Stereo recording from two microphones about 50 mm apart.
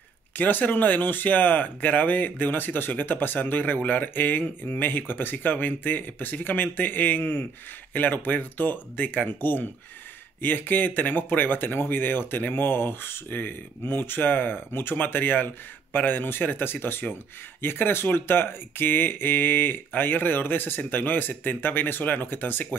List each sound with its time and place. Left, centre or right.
0.4 s speech: left